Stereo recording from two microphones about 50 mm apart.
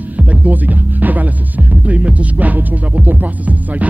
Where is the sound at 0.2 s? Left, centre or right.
Right.